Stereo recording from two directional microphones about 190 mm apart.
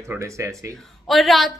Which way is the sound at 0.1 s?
15° right (ahead or behind).